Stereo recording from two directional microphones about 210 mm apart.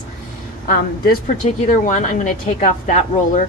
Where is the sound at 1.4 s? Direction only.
35° left (ahead or behind).